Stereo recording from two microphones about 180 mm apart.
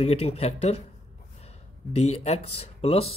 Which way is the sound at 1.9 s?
35° left (ahead or behind).